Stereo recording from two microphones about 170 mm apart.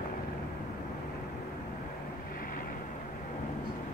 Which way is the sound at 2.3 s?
60° left (ahead or behind).